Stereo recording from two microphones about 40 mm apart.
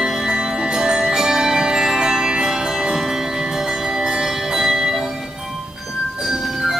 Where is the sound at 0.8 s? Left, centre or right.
Centre.